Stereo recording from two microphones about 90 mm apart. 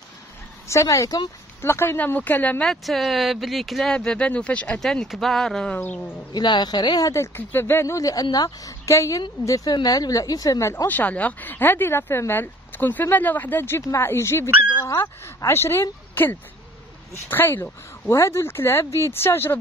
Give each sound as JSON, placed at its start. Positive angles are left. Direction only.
{"t": 0.7, "sound": "a woman's voice", "side_deg": 35}
{"t": 1.6, "sound": "speech", "side_deg": 30}
{"t": 2.6, "sound": "speech", "side_deg": 5}
{"t": 5.8, "sound": "speech", "side_deg": 20}
{"t": 6.3, "sound": "speech", "side_deg": 55}
{"t": 7.3, "sound": "a woman's voice", "side_deg": 25}
{"t": 9.7, "sound": "speech", "side_deg": 45}
{"t": 10.9, "sound": "speech", "side_deg": 20}